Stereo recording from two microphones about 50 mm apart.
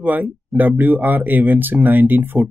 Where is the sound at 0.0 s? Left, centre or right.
Right.